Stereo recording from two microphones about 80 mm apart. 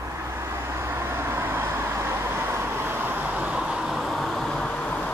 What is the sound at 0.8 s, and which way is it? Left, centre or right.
Vehicle, right.